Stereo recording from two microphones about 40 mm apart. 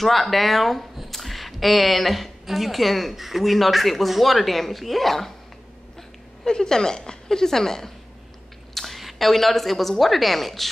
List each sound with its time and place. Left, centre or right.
0.0 s a woman's voice: centre
5.9 s a woman's voice: centre